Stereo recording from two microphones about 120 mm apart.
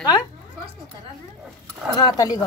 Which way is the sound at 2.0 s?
30° left (ahead or behind).